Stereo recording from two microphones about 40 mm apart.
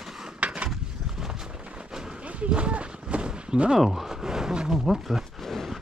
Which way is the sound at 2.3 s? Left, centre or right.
Right.